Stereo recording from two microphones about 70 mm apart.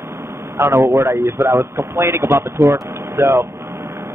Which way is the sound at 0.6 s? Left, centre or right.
Right.